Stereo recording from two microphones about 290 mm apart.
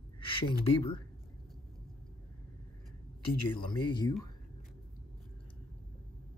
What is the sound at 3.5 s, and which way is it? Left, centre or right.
Speech, centre.